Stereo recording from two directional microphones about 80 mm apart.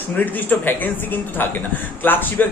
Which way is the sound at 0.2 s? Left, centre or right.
Left.